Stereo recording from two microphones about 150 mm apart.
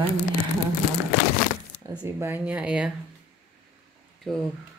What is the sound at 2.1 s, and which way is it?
Speech, 15° right (ahead or behind).